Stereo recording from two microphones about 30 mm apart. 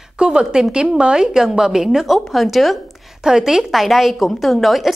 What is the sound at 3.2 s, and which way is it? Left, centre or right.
Speech, right.